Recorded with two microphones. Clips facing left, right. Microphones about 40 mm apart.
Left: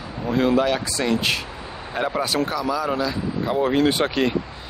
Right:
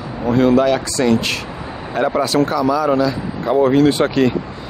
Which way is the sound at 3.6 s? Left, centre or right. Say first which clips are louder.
Right 6 dB; left.